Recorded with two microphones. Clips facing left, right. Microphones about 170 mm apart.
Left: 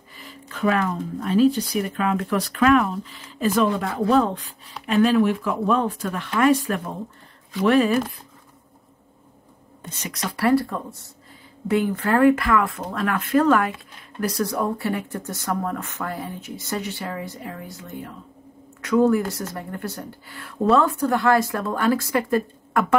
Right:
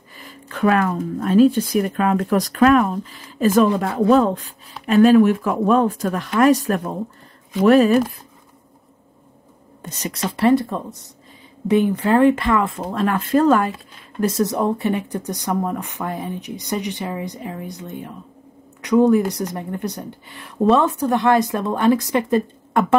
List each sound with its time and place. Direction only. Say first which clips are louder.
0.2 s speech: right 4 dB; 50° right (ahead or behind)
9.8 s speech: right 6 dB; 40° right (ahead or behind)
10.3 s speech: right 3 dB; 20° right (ahead or behind)